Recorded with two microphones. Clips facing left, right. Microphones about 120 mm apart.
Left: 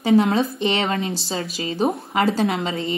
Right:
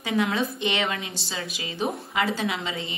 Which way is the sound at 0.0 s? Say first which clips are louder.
Left 8 dB; 35° left (ahead or behind).